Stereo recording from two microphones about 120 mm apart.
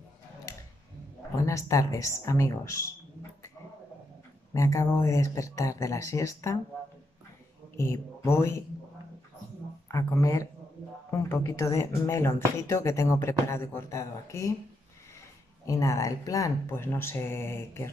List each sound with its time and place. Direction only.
1.4 s speech: 25° left (ahead or behind)
4.6 s speech: 25° left (ahead or behind)
7.7 s speech: 25° left (ahead or behind)
9.8 s speech: 25° left (ahead or behind)
15.6 s speech: 25° left (ahead or behind)